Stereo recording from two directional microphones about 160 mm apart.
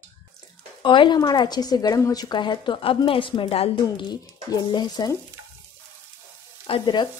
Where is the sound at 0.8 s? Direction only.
30° left (ahead or behind).